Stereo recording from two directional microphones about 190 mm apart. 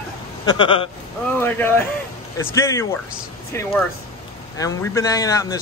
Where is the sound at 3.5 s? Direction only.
15° left (ahead or behind).